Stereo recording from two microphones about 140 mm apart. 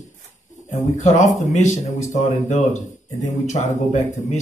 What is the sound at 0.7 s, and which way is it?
A man's voice, 60° left (ahead or behind).